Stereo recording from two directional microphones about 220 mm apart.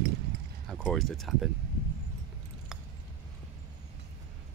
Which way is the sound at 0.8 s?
Centre (ahead or behind).